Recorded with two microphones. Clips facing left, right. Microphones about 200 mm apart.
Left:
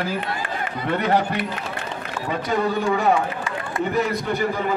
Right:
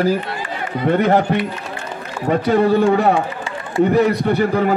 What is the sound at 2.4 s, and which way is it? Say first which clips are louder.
Speech: right 8 dB; 60° right (ahead or behind).